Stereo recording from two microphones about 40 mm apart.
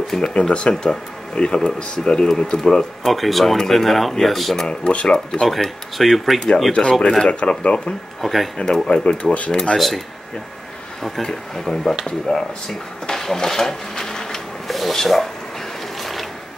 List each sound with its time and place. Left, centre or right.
0.3 s speech: left
3.0 s speech: centre
4.6 s speech: left
5.5 s speech: centre
6.7 s speech: left
8.2 s speech: centre
8.5 s speech: centre
9.0 s speech: left
9.8 s speech: centre
16.0 s mechanisms: centre